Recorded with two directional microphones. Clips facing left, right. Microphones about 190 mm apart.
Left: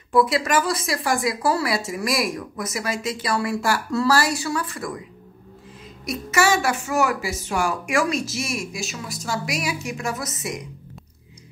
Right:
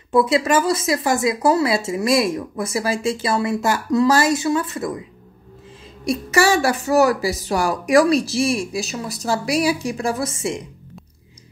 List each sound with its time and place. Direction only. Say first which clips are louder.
0.1 s speech: right 3 dB; 25° right (ahead or behind)
6.0 s a woman's voice: right 4 dB; 35° right (ahead or behind)